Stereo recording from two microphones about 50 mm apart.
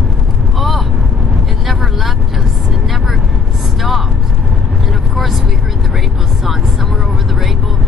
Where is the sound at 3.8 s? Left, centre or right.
Centre.